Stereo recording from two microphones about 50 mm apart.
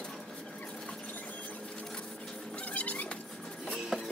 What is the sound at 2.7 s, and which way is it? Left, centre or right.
Cat, left.